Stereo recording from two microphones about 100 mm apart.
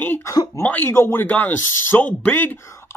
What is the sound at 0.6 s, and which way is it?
Speech, 20° left (ahead or behind).